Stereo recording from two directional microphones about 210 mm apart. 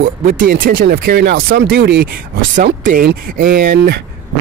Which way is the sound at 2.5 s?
40° right (ahead or behind).